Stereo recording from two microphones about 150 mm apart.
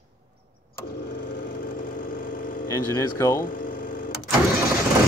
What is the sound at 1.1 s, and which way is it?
Vehicle, 90° left.